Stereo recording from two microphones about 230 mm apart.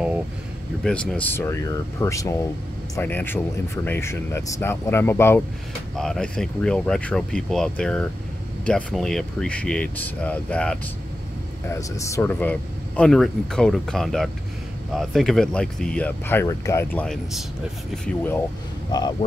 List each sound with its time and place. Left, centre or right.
0.8 s speech: centre